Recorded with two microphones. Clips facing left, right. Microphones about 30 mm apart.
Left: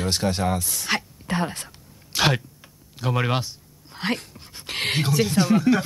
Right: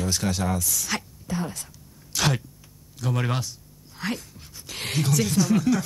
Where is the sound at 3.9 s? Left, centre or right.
Left.